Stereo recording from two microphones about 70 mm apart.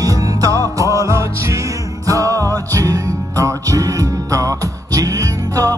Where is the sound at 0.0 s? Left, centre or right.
Right.